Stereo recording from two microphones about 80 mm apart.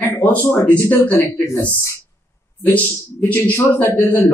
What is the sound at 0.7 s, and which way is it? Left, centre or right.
Speech, left.